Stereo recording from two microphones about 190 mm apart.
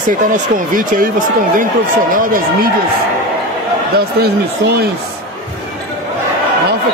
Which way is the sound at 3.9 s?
55° right (ahead or behind).